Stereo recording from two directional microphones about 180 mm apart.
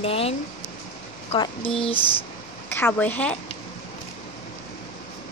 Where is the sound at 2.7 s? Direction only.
10° left (ahead or behind).